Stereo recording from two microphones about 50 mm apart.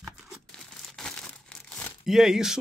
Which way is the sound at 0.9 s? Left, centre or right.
Centre.